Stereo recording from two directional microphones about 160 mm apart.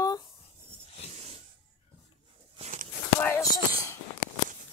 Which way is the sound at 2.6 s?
55° right (ahead or behind).